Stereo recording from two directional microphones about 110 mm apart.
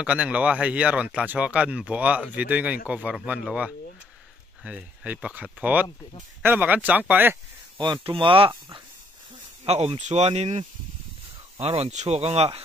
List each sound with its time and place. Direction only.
0.0 s speech: 10° right (ahead or behind)
7.7 s speech: 45° right (ahead or behind)
9.7 s speech: 75° right (ahead or behind)
11.6 s speech: 70° right (ahead or behind)